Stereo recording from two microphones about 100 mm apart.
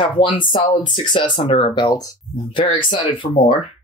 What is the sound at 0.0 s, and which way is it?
Speech, 55° left (ahead or behind).